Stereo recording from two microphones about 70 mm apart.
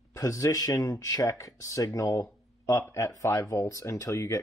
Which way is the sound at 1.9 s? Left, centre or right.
Left.